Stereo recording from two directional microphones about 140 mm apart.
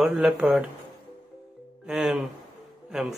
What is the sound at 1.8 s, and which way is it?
Speech, 5° right (ahead or behind).